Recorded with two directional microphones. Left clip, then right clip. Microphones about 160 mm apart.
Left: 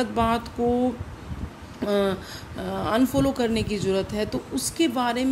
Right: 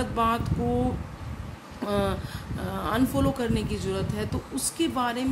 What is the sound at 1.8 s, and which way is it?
A woman's voice, 15° left (ahead or behind).